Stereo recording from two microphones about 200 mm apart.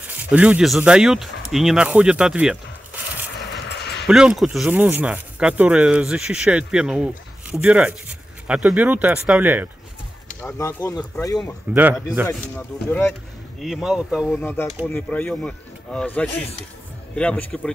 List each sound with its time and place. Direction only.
0.0 s speech: 10° right (ahead or behind)
3.3 s vehicle: 60° left (ahead or behind)
4.1 s speech: centre (ahead or behind)
10.4 s speech: 15° left (ahead or behind)
11.7 s speech: 5° right (ahead or behind)
12.3 s speech: 10° left (ahead or behind)
14.3 s speech: 10° left (ahead or behind)